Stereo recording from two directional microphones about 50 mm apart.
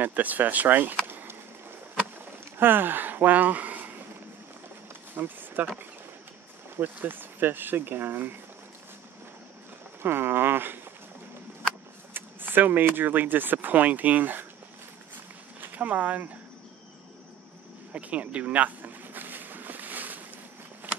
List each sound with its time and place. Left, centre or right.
0.0 s speech: right
1.0 s a sound: right
2.6 s speech: right
5.1 s speech: right
6.8 s speech: right
10.0 s speech: right
12.1 s speech: right
15.6 s speech: right
17.9 s a sound: right